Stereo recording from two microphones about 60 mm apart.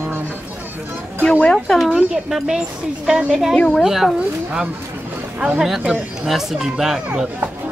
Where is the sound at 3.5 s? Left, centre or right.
Centre.